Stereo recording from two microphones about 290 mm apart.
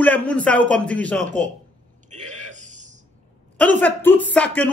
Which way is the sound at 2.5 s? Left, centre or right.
Right.